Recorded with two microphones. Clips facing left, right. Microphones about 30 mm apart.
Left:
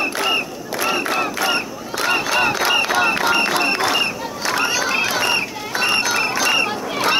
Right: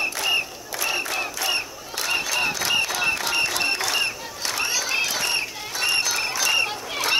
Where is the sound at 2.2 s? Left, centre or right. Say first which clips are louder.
Left 6 dB; left.